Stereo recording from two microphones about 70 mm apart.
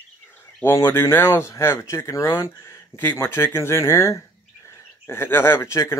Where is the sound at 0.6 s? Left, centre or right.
Left.